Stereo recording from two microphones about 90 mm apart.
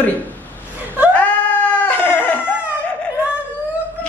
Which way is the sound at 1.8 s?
20° left (ahead or behind).